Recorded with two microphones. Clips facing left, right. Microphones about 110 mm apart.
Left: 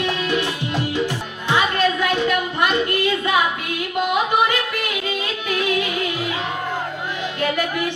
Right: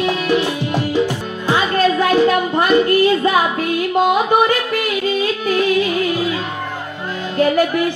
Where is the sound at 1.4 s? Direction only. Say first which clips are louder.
Right 3 dB; 40° right (ahead or behind).